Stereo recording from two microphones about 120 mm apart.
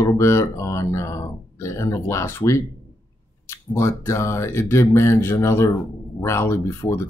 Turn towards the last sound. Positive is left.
turn(degrees=20)  # may be behind; listen again after turning